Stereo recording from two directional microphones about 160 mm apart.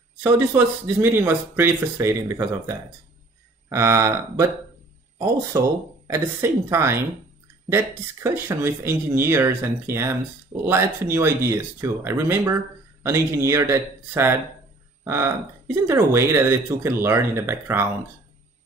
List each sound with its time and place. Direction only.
0.2 s speech: 10° right (ahead or behind)
5.5 s speech: 20° right (ahead or behind)